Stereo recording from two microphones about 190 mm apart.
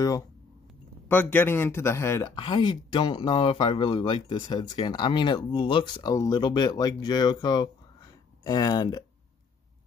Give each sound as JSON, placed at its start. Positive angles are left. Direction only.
{"t": 1.0, "sound": "speech", "side_deg": 10}
{"t": 2.3, "sound": "speech", "side_deg": 25}